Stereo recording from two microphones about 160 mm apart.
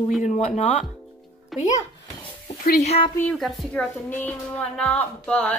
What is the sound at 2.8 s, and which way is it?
Speech, 40° left (ahead or behind).